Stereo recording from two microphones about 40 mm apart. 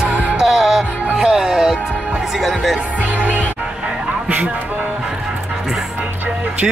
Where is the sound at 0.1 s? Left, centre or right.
Right.